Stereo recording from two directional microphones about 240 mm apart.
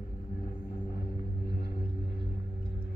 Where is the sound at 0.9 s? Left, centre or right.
Left.